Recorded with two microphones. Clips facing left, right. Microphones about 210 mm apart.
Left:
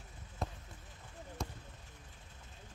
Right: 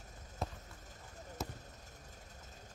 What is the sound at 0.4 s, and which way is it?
Basketball bounce, centre (ahead or behind).